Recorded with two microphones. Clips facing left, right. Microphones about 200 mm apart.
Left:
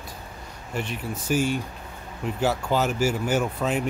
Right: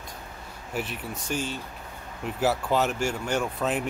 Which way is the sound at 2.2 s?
Centre (ahead or behind).